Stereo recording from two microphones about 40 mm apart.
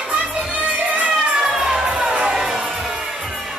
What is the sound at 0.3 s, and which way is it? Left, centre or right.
Music, right.